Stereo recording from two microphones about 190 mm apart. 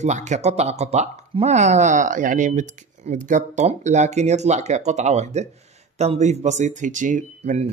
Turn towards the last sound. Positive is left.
turn(degrees=-40)  # may be behind; listen again after turning